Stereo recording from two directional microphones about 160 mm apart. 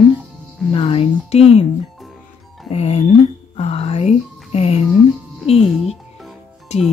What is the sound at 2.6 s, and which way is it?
Music, 40° left (ahead or behind).